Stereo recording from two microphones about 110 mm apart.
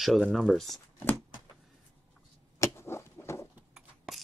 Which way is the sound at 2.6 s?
25° left (ahead or behind).